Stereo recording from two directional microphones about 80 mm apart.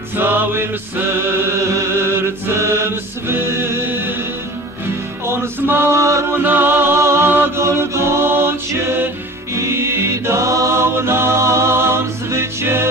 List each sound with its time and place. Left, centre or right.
0.1 s chant: right
5.2 s male singing: right
6.4 s music: right